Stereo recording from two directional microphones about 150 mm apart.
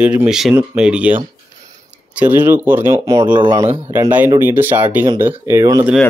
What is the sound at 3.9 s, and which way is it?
A man's voice, 15° right (ahead or behind).